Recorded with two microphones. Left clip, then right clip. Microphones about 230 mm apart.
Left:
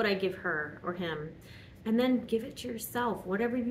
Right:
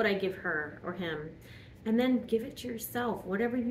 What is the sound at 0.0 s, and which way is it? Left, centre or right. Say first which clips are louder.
A woman's voice: even; centre.